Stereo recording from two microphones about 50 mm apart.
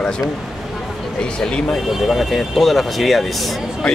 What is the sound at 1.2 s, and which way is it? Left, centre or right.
Speech, centre.